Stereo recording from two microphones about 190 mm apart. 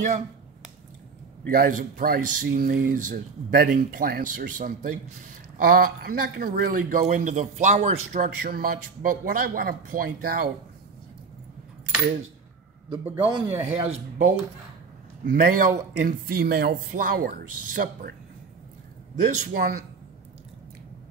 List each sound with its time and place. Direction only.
1.5 s speech: 45° right (ahead or behind)
13.0 s a man's voice: 10° right (ahead or behind)
13.7 s speech: 35° right (ahead or behind)
15.2 s speech: 45° right (ahead or behind)
19.2 s speech: 50° right (ahead or behind)